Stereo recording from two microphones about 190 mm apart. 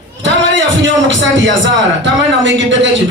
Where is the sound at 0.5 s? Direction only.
80° right.